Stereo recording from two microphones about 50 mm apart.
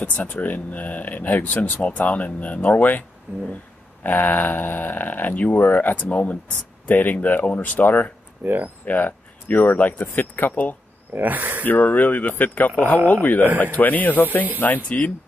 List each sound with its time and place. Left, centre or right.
0.0 s speech: left
3.3 s speech: right
4.0 s speech: left
8.4 s speech: right
8.8 s a sound: left
9.8 s speech: left
11.1 s speech: right
11.6 s speech: left